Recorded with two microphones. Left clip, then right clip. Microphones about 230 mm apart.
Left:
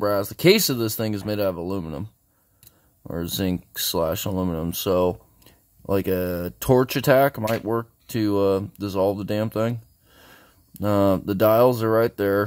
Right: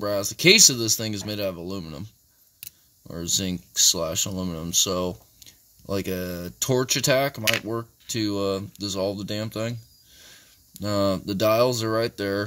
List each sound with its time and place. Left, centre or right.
0.0 s speech: centre
10.8 s speech: centre